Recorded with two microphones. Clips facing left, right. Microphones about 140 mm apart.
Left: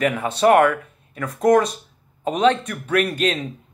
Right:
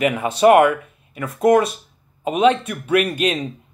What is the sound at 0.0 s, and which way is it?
Speech, 10° right (ahead or behind).